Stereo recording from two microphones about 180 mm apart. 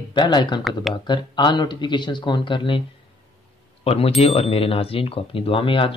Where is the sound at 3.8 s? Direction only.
35° left (ahead or behind).